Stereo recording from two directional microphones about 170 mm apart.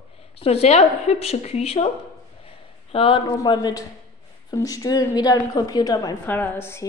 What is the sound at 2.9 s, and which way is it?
A woman's voice, 30° left (ahead or behind).